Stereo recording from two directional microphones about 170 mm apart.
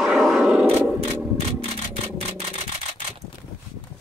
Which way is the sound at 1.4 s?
35° right (ahead or behind).